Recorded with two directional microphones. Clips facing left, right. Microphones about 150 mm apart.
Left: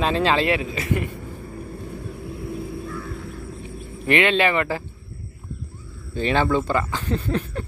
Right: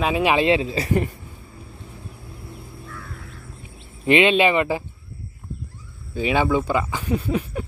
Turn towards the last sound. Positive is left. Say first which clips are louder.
# right 1 dB
turn(degrees=-10)  # may be behind; listen again after turning